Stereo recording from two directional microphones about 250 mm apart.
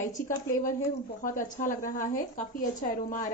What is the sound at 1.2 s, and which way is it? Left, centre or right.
A woman's voice, left.